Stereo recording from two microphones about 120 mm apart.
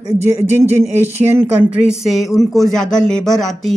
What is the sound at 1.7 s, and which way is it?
Speech, 5° right (ahead or behind).